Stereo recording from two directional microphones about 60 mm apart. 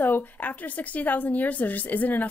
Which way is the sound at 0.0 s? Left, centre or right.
Left.